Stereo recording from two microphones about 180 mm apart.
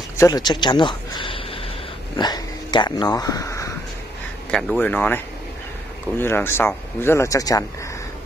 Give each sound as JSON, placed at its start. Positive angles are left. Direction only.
{"t": 0.2, "sound": "speech", "side_deg": 20}
{"t": 4.5, "sound": "speech", "side_deg": 5}